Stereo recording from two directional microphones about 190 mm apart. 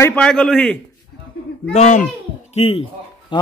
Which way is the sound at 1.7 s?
40° left (ahead or behind).